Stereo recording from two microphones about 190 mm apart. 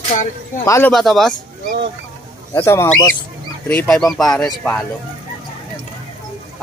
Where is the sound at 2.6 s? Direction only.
15° left (ahead or behind).